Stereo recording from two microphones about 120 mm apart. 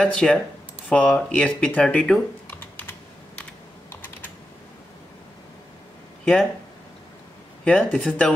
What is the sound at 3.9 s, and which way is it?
Typing, 15° left (ahead or behind).